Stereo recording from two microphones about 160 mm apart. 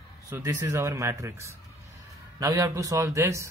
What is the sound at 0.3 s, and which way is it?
Speech, 20° right (ahead or behind).